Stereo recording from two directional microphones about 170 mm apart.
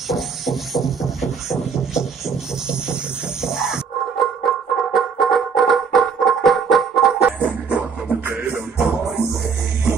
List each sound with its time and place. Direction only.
0.1 s music: centre (ahead or behind)